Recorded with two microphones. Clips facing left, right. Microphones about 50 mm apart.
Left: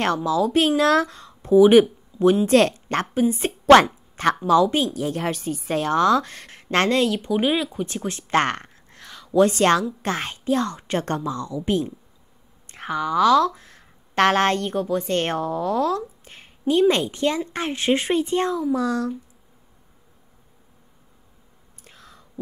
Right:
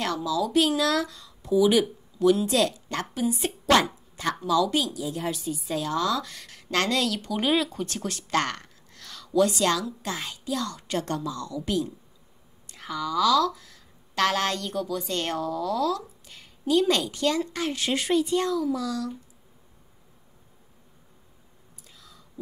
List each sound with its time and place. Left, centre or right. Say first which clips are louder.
0.0 s a woman's voice: left 6 dB; left
2.4 s a woman's voice: left 7 dB; left
3.2 s a woman's voice: left 5 dB; left
3.7 s speech: left 9 dB; left
4.6 s a woman's voice: left 4 dB; left
4.9 s a woman's voice: left 5 dB; left
9.0 s a sound: left 3 dB; left
9.4 s a woman's voice: left 6 dB; left
21.8 s whispering: left 5 dB; left